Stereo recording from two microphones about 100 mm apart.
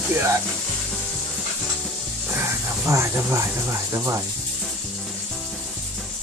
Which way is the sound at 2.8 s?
30° right (ahead or behind).